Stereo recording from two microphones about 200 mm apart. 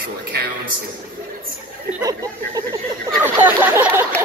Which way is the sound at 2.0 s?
15° right (ahead or behind).